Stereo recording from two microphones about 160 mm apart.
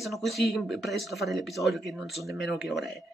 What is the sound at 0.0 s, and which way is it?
A man's voice, centre (ahead or behind).